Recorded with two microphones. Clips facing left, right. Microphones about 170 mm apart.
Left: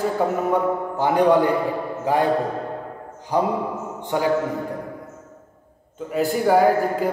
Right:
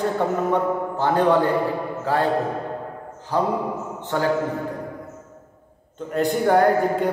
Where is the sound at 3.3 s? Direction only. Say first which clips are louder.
Left 1 dB; 15° left (ahead or behind).